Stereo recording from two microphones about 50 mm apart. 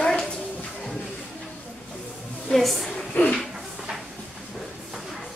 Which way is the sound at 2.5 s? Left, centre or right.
Centre.